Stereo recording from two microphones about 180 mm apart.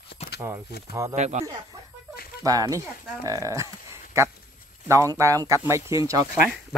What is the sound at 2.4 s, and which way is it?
Speech, 20° right (ahead or behind).